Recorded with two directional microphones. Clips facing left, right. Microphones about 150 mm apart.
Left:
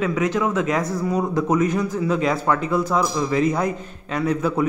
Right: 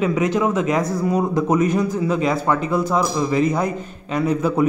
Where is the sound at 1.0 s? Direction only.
10° right (ahead or behind).